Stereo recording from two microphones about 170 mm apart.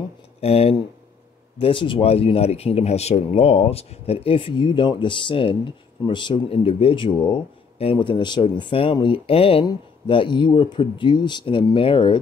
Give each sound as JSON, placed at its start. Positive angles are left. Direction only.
{"t": 0.4, "sound": "speech", "side_deg": 35}